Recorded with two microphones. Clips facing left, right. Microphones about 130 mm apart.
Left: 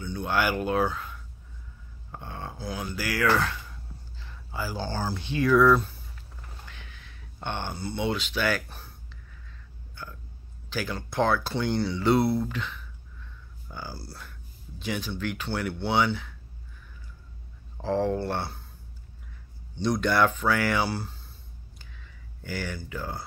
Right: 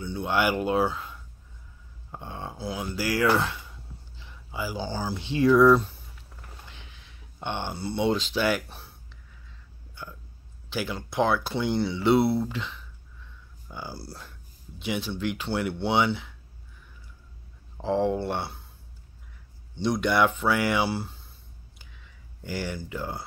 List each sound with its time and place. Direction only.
0.0 s speech: 25° right (ahead or behind)
2.1 s speech: 20° right (ahead or behind)
3.3 s speech: 15° right (ahead or behind)
6.6 s a sound: 25° right (ahead or behind)
7.8 s speech: 30° right (ahead or behind)
10.7 s speech: 20° right (ahead or behind)
13.7 s speech: 5° right (ahead or behind)
14.0 s speech: 35° right (ahead or behind)
14.8 s speech: 25° right (ahead or behind)
17.8 s speech: 20° right (ahead or behind)
19.8 s speech: 20° right (ahead or behind)
22.4 s speech: 25° right (ahead or behind)